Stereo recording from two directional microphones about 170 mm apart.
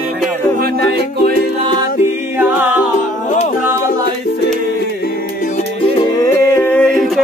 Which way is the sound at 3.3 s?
45° left (ahead or behind).